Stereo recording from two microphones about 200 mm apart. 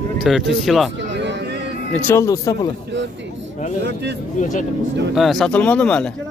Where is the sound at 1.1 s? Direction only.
60° right (ahead or behind).